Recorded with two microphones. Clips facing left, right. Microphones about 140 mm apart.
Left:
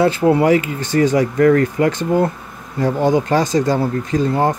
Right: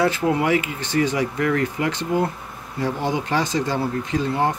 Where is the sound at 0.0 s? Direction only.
35° left (ahead or behind).